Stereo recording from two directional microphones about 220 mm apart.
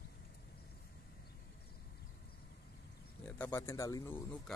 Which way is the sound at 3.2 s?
10° left (ahead or behind).